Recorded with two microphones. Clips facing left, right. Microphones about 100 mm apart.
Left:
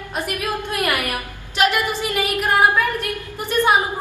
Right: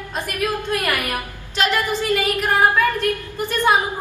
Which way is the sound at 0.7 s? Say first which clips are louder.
Even; 15° left (ahead or behind).